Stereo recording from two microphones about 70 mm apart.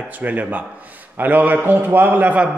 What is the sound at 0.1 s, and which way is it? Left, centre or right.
A man's voice, right.